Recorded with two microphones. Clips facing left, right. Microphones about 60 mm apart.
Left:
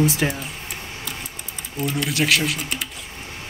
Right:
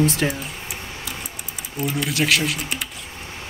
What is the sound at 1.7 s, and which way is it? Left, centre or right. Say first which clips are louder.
Speech: even; centre.